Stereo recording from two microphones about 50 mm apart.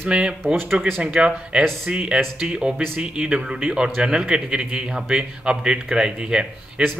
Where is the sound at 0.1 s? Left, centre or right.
Centre.